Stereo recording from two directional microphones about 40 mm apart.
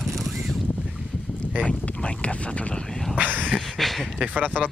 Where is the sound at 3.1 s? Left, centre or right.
Right.